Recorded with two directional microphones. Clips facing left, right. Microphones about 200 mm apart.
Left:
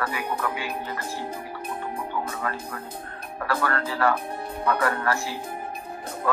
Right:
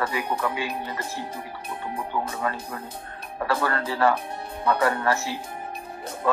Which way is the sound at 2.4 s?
25° right (ahead or behind).